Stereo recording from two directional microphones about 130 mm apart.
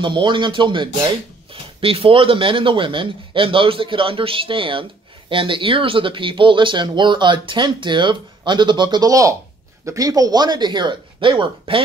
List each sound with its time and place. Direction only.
0.0 s speech: 40° right (ahead or behind)